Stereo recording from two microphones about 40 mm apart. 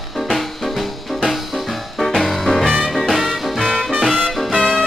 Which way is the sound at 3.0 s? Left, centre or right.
Centre.